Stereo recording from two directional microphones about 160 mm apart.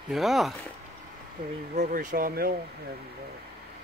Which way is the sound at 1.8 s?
55° right (ahead or behind).